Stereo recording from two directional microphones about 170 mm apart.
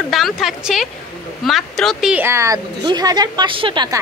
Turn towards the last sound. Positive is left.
turn(degrees=-25)  # may be behind; listen again after turning